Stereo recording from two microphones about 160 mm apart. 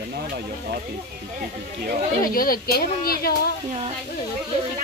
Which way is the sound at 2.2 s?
65° left (ahead or behind).